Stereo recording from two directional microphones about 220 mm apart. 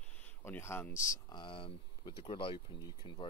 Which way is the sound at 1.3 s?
25° left (ahead or behind).